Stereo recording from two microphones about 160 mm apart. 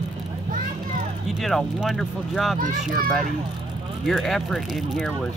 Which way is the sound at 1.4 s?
Centre (ahead or behind).